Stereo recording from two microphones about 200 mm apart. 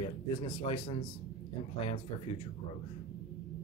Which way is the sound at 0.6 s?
25° left (ahead or behind).